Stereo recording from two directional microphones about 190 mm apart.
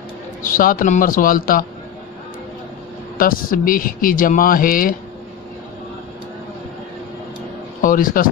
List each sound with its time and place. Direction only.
0.4 s speech: 45° left (ahead or behind)
3.2 s speech: 50° left (ahead or behind)
7.8 s speech: 45° left (ahead or behind)